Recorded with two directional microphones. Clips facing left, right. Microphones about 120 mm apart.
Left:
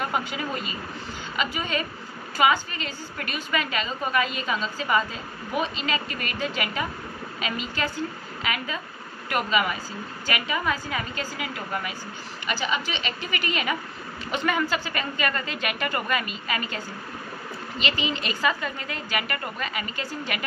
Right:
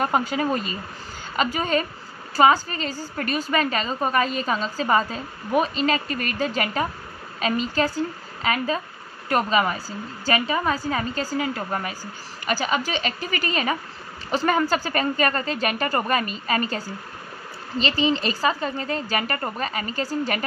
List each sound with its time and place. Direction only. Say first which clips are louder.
0.0 s a woman's voice: right 6 dB; 40° right (ahead or behind)